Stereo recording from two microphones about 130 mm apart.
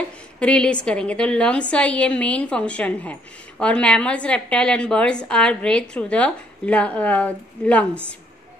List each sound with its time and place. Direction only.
0.4 s a woman's voice: 10° left (ahead or behind)